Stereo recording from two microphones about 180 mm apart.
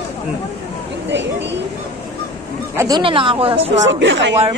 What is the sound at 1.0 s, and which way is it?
Speech, 75° right (ahead or behind).